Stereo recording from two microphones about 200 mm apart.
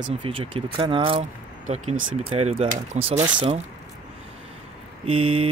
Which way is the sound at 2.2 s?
30° right (ahead or behind).